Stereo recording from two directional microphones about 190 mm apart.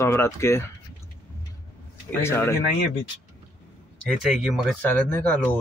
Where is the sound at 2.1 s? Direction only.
10° left (ahead or behind).